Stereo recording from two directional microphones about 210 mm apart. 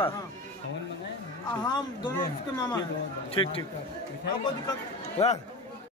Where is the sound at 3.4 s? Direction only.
25° left (ahead or behind).